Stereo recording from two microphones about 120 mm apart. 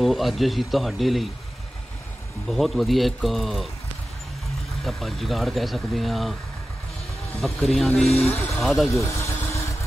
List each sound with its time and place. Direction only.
0.0 s speech: centre (ahead or behind)
2.4 s speech: centre (ahead or behind)
4.8 s speech: centre (ahead or behind)
7.4 s speech: centre (ahead or behind)
8.9 s vehicle: 25° left (ahead or behind)